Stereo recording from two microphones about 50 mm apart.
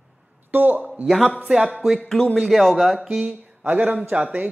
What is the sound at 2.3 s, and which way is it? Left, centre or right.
Speech, centre.